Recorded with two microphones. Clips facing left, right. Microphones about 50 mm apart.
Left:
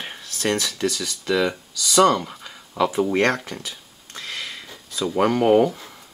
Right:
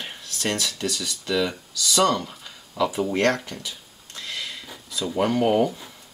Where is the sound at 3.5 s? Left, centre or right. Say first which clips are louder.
Left 2 dB; left.